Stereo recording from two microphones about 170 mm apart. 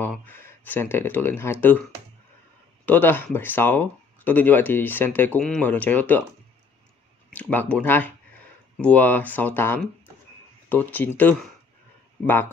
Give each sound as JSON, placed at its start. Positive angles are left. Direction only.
{"t": 0.0, "sound": "speech", "side_deg": 10}
{"t": 2.8, "sound": "speech", "side_deg": 10}
{"t": 7.2, "sound": "speech", "side_deg": 10}